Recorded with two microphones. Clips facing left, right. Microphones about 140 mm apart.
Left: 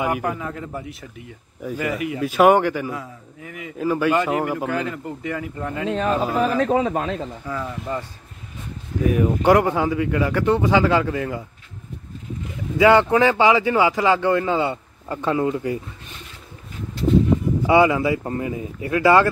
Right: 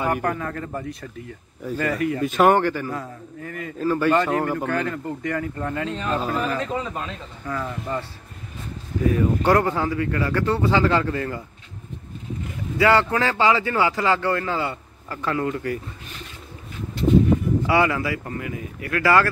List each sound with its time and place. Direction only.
0.0 s speech: 10° left (ahead or behind)
6.6 s speech: 60° left (ahead or behind)
7.4 s speech: 10° left (ahead or behind)
9.1 s speech: 15° left (ahead or behind)
12.7 s speech: 20° left (ahead or behind)
17.6 s speech: 20° left (ahead or behind)